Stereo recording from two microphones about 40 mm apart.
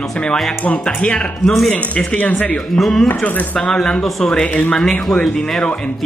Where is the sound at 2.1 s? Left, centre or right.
Left.